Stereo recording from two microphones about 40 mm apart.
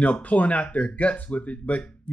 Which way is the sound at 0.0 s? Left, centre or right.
Left.